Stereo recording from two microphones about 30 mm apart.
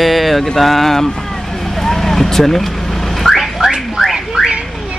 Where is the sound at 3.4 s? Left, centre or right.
Centre.